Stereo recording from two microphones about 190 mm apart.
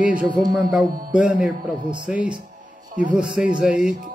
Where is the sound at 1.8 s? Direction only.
25° right (ahead or behind).